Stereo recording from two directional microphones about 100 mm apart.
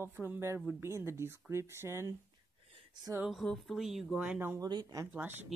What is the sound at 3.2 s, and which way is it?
Speech, centre (ahead or behind).